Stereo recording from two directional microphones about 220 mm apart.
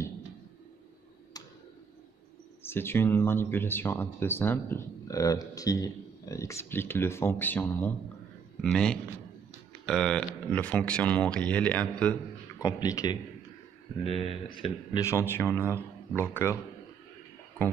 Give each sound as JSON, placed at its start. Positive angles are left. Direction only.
{"t": 2.6, "sound": "speech", "side_deg": 10}
{"t": 12.6, "sound": "speech", "side_deg": 15}